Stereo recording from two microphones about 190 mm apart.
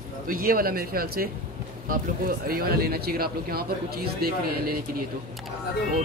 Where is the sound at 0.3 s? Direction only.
50° right (ahead or behind).